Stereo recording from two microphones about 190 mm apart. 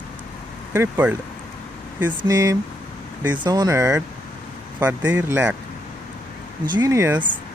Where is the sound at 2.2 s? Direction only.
20° right (ahead or behind).